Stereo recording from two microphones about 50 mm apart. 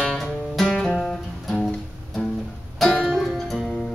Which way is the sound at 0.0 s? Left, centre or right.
Centre.